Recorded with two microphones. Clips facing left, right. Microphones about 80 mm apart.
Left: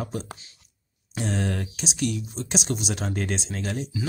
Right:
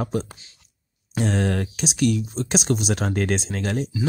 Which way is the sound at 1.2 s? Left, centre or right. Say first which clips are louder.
Right 4 dB; right.